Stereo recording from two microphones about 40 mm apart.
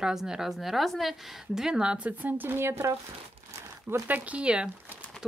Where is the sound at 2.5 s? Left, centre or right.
Right.